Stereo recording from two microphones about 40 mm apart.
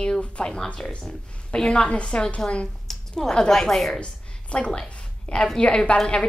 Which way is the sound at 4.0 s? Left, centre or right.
Left.